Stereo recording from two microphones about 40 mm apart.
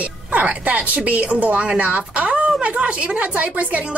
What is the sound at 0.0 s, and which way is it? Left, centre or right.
Speech, right.